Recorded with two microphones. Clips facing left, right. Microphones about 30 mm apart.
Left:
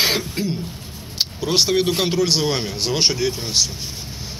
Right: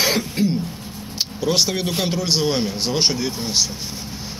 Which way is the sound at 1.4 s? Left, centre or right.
Left.